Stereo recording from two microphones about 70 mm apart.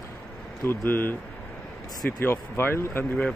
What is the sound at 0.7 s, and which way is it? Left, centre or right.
Speech, left.